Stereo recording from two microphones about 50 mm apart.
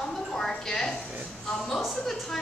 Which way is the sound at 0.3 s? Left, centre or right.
Centre.